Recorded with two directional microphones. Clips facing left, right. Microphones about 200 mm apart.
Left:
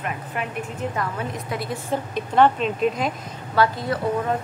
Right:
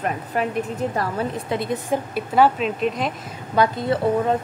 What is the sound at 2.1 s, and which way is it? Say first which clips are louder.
Speech: even; 5° right (ahead or behind).